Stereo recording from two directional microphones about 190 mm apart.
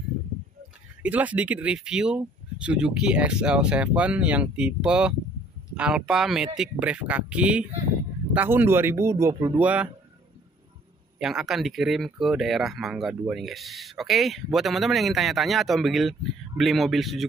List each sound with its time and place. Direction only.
1.0 s speech: 10° right (ahead or behind)
11.1 s speech: centre (ahead or behind)